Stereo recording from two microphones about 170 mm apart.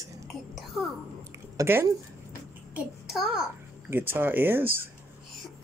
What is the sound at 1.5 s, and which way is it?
Speech, 15° right (ahead or behind).